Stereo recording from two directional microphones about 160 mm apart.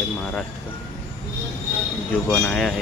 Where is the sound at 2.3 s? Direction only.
5° left (ahead or behind).